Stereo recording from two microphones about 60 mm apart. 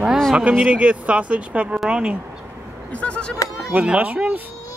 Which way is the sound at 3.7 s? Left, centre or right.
Right.